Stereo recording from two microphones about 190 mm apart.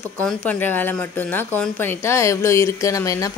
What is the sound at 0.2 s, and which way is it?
Speech, 5° left (ahead or behind).